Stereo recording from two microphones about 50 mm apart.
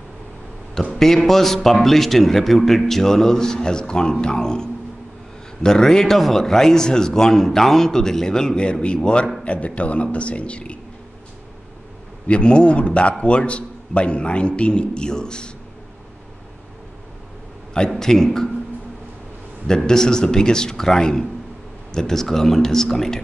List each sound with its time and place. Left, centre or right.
0.9 s a man's voice: centre
12.3 s a man's voice: left
17.7 s a man's voice: centre
19.8 s a man's voice: centre